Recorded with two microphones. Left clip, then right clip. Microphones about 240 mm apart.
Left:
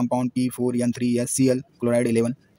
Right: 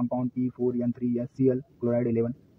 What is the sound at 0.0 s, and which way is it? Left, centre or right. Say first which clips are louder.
Speech: left 6 dB; left.